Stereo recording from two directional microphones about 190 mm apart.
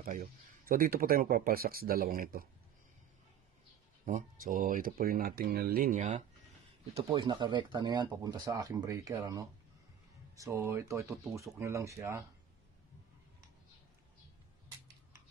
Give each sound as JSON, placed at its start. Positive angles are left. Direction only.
{"t": 0.0, "sound": "speech", "side_deg": -50}
{"t": 4.0, "sound": "speech", "side_deg": -45}